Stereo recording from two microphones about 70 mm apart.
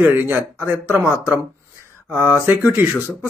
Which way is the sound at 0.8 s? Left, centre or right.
Right.